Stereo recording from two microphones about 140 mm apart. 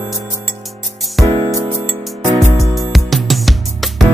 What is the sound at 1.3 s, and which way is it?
Music, 35° right (ahead or behind).